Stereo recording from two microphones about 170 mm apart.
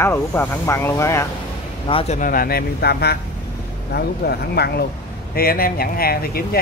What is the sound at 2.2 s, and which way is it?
Speech, 55° left (ahead or behind).